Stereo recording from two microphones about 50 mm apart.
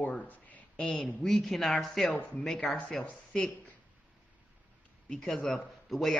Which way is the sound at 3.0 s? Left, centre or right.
Left.